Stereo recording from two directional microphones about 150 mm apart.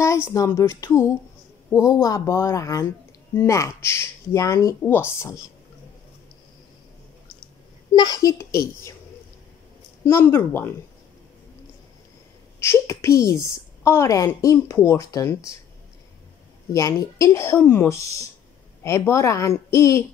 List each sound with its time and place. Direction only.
0.0 s speech: 20° left (ahead or behind)
7.9 s speech: 30° left (ahead or behind)
10.0 s speech: 15° left (ahead or behind)
12.5 s speech: 20° left (ahead or behind)
16.7 s speech: 20° left (ahead or behind)